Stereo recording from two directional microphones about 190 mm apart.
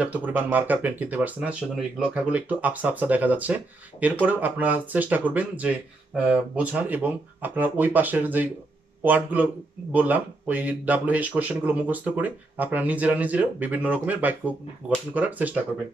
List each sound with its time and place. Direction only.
0.0 s speech: 10° right (ahead or behind)